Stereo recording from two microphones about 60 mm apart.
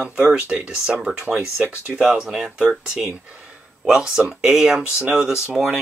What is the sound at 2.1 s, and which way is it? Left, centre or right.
Speech, centre.